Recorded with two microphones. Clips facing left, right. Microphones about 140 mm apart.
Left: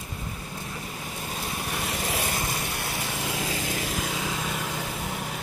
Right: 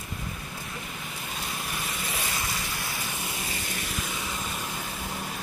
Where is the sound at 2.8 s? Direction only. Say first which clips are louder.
Left 4 dB; 90° left.